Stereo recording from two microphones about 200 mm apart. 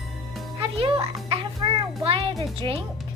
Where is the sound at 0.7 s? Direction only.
25° right (ahead or behind).